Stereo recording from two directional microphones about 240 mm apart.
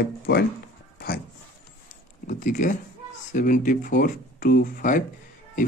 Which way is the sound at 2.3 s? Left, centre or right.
Left.